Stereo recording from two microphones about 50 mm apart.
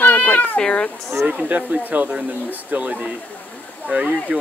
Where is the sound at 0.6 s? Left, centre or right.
Centre.